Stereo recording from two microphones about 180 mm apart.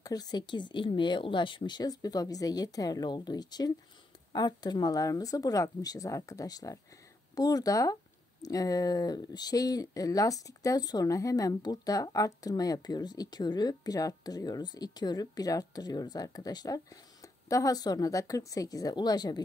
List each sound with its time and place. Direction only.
0.0 s speech: 20° left (ahead or behind)